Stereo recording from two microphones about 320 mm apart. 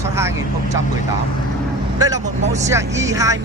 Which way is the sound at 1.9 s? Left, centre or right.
Centre.